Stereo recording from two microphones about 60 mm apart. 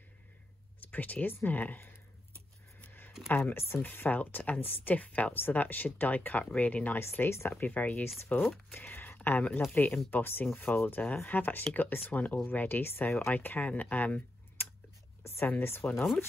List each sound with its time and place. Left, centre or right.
0.9 s speech: left
2.8 s a sound: left
3.3 s speech: left
3.5 s speech: left
7.0 s speech: left
7.5 s speech: left
13.3 s speech: left
15.6 s speech: left